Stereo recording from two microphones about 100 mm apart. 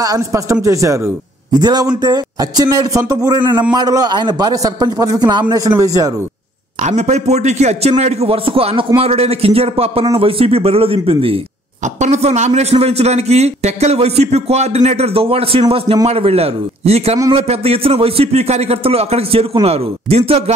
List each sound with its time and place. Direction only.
0.0 s a man's voice: 35° right (ahead or behind)
1.5 s a man's voice: 45° right (ahead or behind)
3.3 s a man's voice: 50° right (ahead or behind)
7.0 s a man's voice: 90° right; by 11.3 s 70° right (ahead or behind)
12.2 s a man's voice: 90° right; by 15.6 s 75° right (ahead or behind)
16.1 s a man's voice: 85° right